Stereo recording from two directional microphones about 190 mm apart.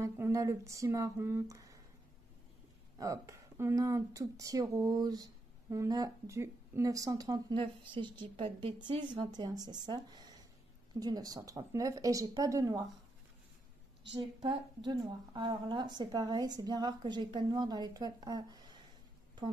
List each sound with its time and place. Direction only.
0.0 s speech: 15° right (ahead or behind)
3.0 s speech: 15° right (ahead or behind)
14.1 s speech: 30° right (ahead or behind)